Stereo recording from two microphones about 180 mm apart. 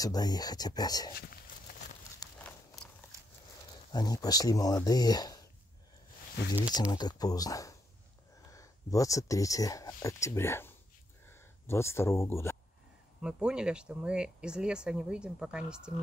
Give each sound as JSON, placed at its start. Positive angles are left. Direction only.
{"t": 0.0, "sound": "speech", "side_deg": 20}
{"t": 1.1, "sound": "speech", "side_deg": 60}
{"t": 2.3, "sound": "a sound", "side_deg": 5}
{"t": 3.9, "sound": "speech", "side_deg": 20}
{"t": 6.9, "sound": "speech", "side_deg": 20}
{"t": 13.2, "sound": "speech", "side_deg": -5}